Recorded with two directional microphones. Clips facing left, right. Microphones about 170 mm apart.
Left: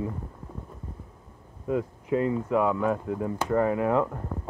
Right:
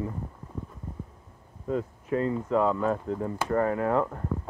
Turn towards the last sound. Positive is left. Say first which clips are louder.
# left 1 dB
turn(degrees=15)  # may be behind; listen again after turning